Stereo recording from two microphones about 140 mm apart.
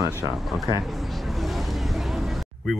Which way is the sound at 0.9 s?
Centre (ahead or behind).